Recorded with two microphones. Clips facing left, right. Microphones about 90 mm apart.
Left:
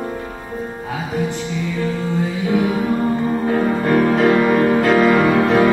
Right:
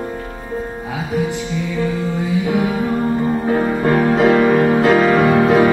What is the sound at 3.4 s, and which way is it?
Music, 15° right (ahead or behind).